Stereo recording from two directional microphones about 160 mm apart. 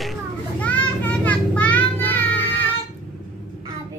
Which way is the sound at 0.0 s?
5° left (ahead or behind).